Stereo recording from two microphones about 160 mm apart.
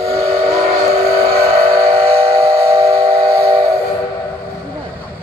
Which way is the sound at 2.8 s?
40° right (ahead or behind).